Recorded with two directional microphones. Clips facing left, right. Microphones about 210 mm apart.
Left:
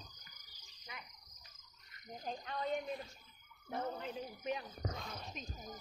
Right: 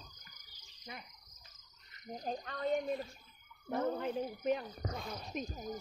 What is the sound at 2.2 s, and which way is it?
Frog, 45° right (ahead or behind).